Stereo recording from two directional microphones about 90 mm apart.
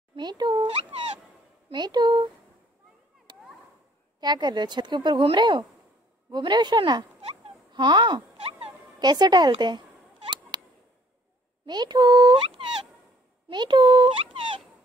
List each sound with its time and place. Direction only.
0.1 s dog: 55° right (ahead or behind)
1.7 s speech: 50° right (ahead or behind)
4.2 s a woman's voice: 50° right (ahead or behind)
7.7 s a sound: 60° right (ahead or behind); by 8.7 s 90° right
9.0 s speech: 50° right (ahead or behind)
10.5 s a sound: 55° right (ahead or behind)
11.6 s speech: 55° right (ahead or behind)
12.4 s a sound: 80° right
13.5 s speech: 55° right (ahead or behind); by 14.6 s 80° right